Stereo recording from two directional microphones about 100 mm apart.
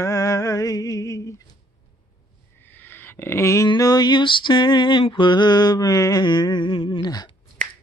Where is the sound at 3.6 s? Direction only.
40° left (ahead or behind).